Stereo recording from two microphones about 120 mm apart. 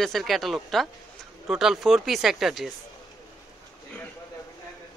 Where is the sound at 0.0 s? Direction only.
Centre (ahead or behind).